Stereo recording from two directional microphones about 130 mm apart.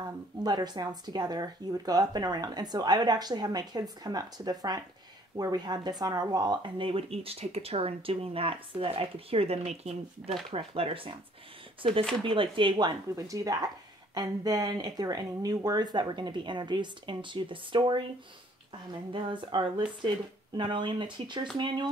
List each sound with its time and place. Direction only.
0.4 s speech: 30° right (ahead or behind)
12.2 s speech: 40° right (ahead or behind)
19.1 s speech: 40° right (ahead or behind)